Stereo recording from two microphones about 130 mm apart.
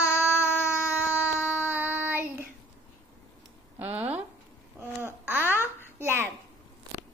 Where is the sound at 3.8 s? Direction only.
15° right (ahead or behind).